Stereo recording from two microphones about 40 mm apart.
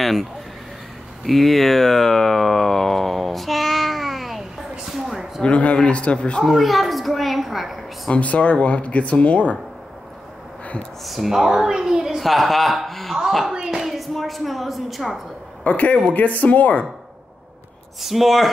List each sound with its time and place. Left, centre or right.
0.0 s speech: centre
1.2 s a sound: centre
5.4 s speech: left
6.4 s a woman's voice: centre
8.1 s speech: left
11.1 s a woman's voice: centre
12.2 s a man's voice: centre
13.5 s a sound: centre
13.9 s a woman's voice: centre
15.6 s speech: left
18.0 s speech: centre